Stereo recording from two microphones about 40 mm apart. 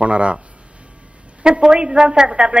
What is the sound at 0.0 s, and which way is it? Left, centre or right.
Speech, right.